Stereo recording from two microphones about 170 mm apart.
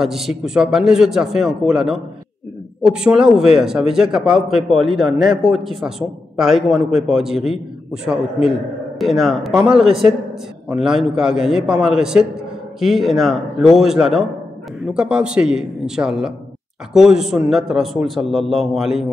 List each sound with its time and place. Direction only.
0.0 s a man's voice: centre (ahead or behind)
4.8 s a man's voice: 30° right (ahead or behind)
5.5 s a man's voice: centre (ahead or behind)